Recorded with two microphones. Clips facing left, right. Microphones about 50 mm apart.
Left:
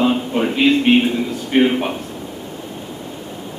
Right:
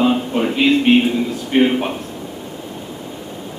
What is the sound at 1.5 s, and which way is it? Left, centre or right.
Speech, centre.